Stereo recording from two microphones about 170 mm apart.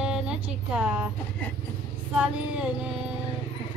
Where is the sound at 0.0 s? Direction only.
5° right (ahead or behind).